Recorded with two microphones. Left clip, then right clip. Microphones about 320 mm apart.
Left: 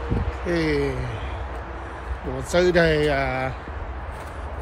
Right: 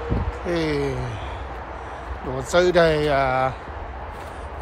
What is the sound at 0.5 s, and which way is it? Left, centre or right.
Speech, centre.